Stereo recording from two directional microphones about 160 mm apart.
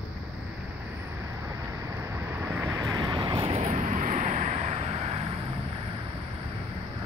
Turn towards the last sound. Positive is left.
turn(degrees=-40)  # may be behind; listen again after turning